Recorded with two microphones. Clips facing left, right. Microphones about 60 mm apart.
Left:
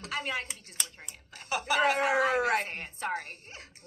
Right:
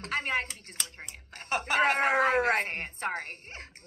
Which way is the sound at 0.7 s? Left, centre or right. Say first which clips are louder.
Right 1 dB; right.